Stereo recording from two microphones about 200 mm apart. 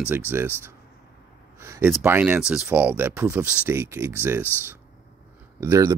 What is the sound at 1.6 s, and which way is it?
Speech, 15° right (ahead or behind).